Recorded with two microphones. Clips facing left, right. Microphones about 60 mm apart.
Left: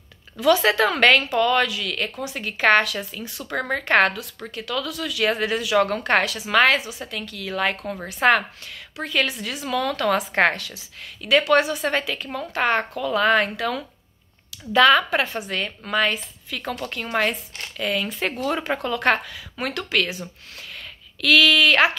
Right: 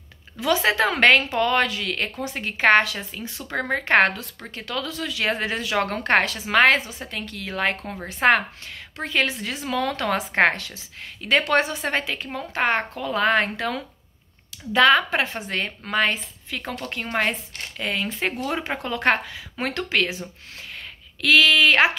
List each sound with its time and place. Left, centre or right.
0.4 s a woman's voice: right
21.2 s speech: right